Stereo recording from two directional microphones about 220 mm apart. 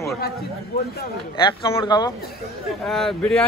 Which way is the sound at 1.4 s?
20° left (ahead or behind).